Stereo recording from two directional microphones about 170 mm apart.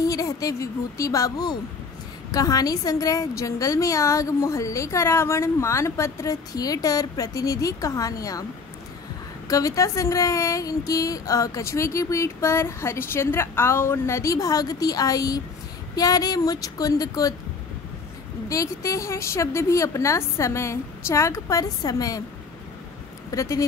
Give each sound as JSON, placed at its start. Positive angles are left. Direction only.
{"t": 0.0, "sound": "a woman's voice", "side_deg": 20}
{"t": 9.5, "sound": "a woman's voice", "side_deg": 20}
{"t": 18.5, "sound": "speech", "side_deg": 20}
{"t": 23.3, "sound": "speech", "side_deg": 20}